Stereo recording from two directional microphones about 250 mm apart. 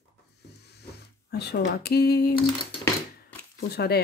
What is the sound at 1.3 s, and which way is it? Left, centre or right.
Speech, left.